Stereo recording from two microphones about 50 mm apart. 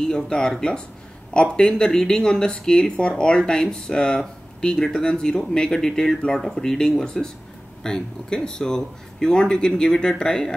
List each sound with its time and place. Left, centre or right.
0.1 s speech: centre